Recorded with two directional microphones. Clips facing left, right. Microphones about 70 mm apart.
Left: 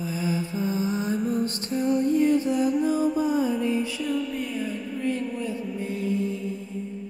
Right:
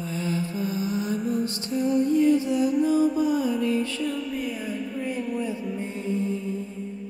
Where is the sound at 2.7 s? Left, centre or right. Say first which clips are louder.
Right 2 dB; centre.